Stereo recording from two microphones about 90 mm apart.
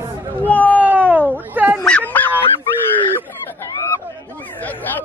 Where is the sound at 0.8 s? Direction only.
20° right (ahead or behind).